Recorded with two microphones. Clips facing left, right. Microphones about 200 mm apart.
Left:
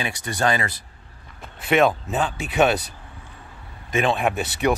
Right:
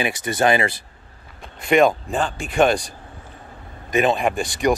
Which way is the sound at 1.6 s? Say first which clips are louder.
Right 3 dB; centre (ahead or behind).